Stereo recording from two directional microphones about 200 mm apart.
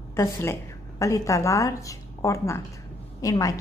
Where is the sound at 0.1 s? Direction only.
15° left (ahead or behind).